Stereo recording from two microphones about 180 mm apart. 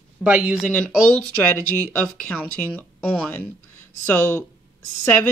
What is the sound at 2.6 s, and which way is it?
Speech, 5° left (ahead or behind).